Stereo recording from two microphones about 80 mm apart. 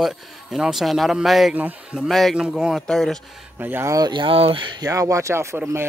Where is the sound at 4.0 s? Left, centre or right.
Right.